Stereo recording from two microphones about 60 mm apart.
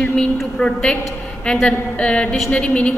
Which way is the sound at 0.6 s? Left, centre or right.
Centre.